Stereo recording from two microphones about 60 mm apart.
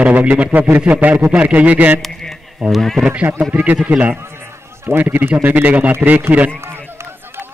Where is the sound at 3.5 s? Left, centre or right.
Right.